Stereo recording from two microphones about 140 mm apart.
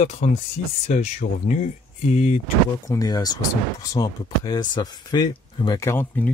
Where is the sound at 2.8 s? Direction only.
25° left (ahead or behind).